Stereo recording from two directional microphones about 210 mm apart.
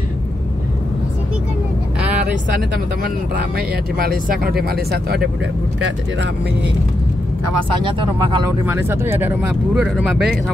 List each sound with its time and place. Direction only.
3.5 s speech: 45° right (ahead or behind)
7.8 s speech: 20° right (ahead or behind)
8.6 s speech: 10° right (ahead or behind)